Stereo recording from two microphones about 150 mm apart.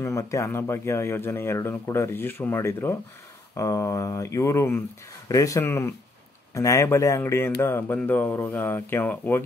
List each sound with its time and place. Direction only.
0.0 s speech: 20° left (ahead or behind)